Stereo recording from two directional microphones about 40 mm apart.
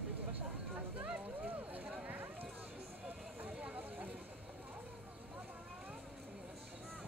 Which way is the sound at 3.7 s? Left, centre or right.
Right.